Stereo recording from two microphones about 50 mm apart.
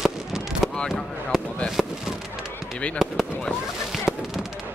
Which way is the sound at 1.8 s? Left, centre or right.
Centre.